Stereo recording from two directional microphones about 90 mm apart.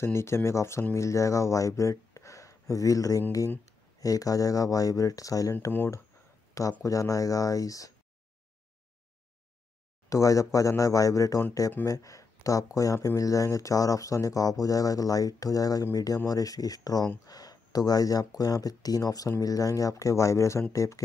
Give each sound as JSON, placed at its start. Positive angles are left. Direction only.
{"t": 0.0, "sound": "speech", "side_deg": 30}
{"t": 6.8, "sound": "speech", "side_deg": 40}
{"t": 10.0, "sound": "speech", "side_deg": 35}